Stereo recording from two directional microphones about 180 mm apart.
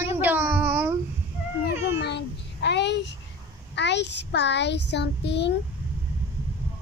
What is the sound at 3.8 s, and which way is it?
A child's voice, 75° left (ahead or behind).